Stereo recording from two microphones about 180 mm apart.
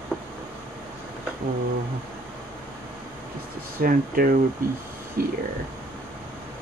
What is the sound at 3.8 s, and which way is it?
Speech, 50° right (ahead or behind).